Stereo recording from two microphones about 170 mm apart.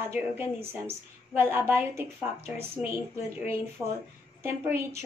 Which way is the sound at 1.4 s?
10° right (ahead or behind).